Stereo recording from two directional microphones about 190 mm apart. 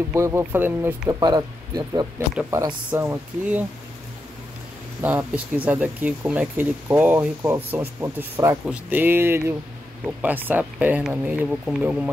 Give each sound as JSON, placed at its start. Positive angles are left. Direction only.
{"t": 0.1, "sound": "speech", "side_deg": -15}
{"t": 1.2, "sound": "speech", "side_deg": -20}
{"t": 5.0, "sound": "speech", "side_deg": -10}